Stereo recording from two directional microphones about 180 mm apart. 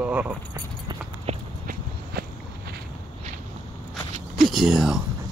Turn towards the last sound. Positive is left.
turn(degrees=0)  # may be behind; listen again after turning